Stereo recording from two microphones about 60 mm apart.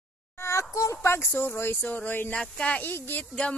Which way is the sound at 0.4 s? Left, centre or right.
Left.